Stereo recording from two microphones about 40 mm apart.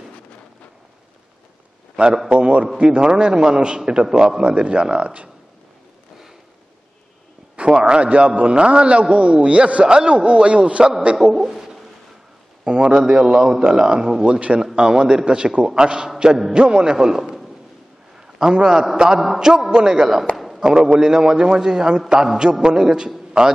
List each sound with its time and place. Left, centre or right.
2.2 s a man's voice: right
4.4 s a man's voice: right
7.5 s a man's voice: right
11.3 s a sound: centre
12.6 s a man's voice: right
14.6 s a man's voice: centre
17.2 s a sound: centre
18.2 s a man's voice: centre
20.3 s a sound: centre
20.6 s a man's voice: centre